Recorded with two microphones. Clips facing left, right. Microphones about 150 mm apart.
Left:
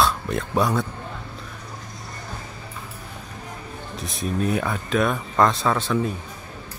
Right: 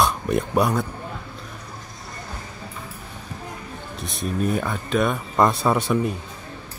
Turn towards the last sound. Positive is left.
turn(degrees=-10)  # may be behind; listen again after turning